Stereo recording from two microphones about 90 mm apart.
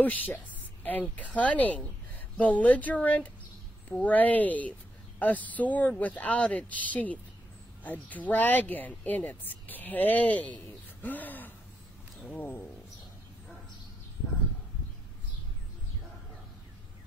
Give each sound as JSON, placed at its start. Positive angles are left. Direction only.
{"t": 0.0, "sound": "a woman's voice", "side_deg": 20}